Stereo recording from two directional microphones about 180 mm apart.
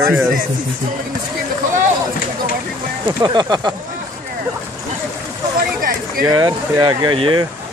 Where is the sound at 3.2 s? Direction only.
25° right (ahead or behind).